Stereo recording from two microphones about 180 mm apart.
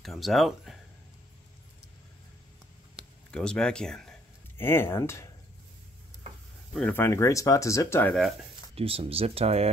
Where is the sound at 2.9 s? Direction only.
5° left (ahead or behind).